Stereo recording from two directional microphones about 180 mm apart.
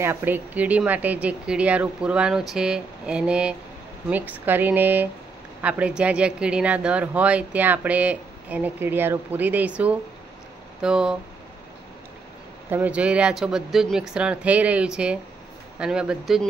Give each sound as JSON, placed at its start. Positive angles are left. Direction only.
{"t": 0.0, "sound": "speech", "side_deg": -10}
{"t": 12.6, "sound": "speech", "side_deg": -10}